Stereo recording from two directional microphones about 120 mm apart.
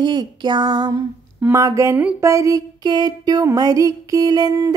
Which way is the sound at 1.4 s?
25° right (ahead or behind).